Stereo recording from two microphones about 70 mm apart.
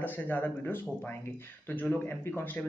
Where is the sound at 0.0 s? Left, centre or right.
Left.